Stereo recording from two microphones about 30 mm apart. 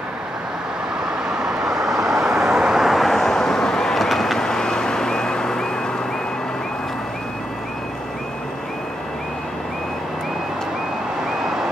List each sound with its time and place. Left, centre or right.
1.3 s vehicle: right
2.8 s vehicle: centre
3.1 s vehicle: centre
3.9 s vehicle: centre
4.4 s vehicle: left